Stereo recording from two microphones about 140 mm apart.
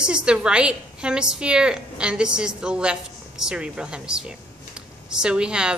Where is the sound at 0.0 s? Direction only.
5° right (ahead or behind).